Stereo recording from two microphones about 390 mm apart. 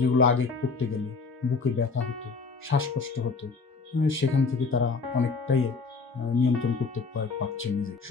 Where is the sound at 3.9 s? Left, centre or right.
Left.